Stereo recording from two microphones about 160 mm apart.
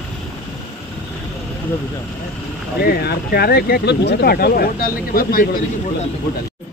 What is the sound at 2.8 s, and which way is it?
Speech, 85° left.